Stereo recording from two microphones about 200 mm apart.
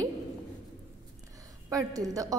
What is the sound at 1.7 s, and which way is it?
Speech, 15° right (ahead or behind).